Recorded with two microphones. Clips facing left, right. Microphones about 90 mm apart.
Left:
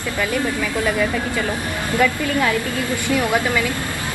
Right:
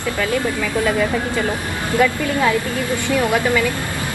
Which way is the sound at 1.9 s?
20° right (ahead or behind).